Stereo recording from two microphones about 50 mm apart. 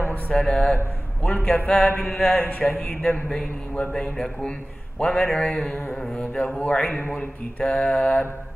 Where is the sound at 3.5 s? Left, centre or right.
Left.